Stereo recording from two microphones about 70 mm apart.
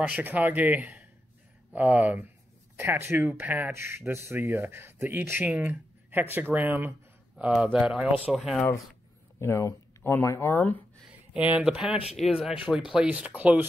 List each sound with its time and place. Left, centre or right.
0.0 s speech: right
3.7 s speech: right; by 8.1 s centre
8.3 s speech: centre
9.4 s speech: left
11.1 s speech: right